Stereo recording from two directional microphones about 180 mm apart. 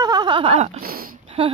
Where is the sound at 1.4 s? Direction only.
30° right (ahead or behind).